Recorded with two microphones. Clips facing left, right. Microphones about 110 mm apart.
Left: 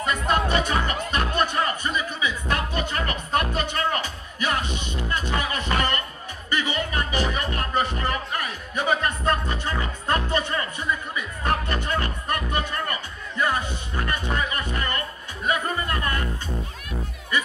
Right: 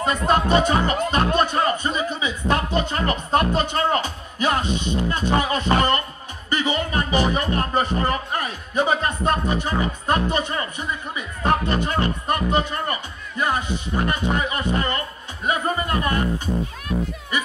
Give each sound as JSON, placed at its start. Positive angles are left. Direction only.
{"t": 0.0, "sound": "music", "side_deg": -25}